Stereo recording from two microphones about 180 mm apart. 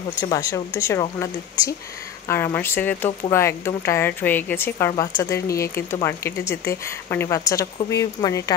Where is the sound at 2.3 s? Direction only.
15° left (ahead or behind).